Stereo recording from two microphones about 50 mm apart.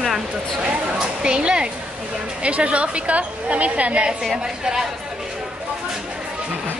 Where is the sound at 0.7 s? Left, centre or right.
Centre.